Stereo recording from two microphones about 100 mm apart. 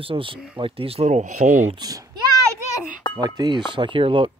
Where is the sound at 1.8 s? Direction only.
40° right (ahead or behind).